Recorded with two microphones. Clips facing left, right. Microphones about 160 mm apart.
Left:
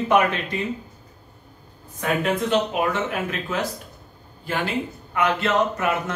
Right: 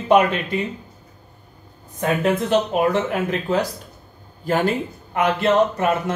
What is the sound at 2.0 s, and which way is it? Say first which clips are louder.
Speech: right 3 dB; 40° right (ahead or behind).